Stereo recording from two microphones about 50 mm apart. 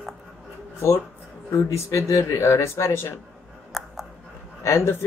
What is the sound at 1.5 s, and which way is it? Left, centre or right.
Speech, left.